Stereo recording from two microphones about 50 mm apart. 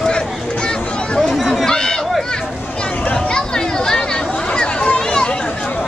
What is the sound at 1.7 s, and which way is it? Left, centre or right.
Run, centre.